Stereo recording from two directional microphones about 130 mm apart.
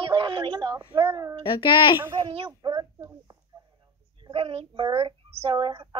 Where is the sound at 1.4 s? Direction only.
40° left (ahead or behind).